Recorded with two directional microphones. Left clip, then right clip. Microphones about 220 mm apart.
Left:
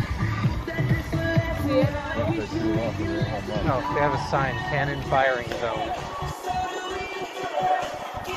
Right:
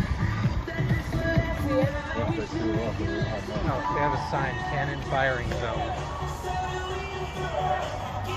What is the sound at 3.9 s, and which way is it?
Speech, 20° left (ahead or behind).